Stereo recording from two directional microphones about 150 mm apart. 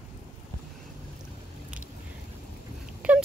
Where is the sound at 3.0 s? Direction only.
10° right (ahead or behind).